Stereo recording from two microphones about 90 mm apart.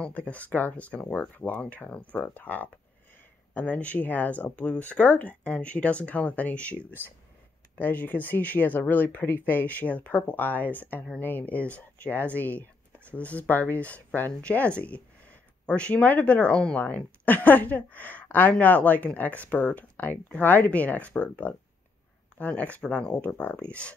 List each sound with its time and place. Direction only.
0.0 s speech: 15° left (ahead or behind)